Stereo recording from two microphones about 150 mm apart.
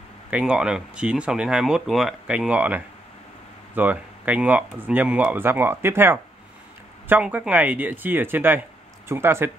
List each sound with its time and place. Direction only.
0.3 s speech: 5° right (ahead or behind)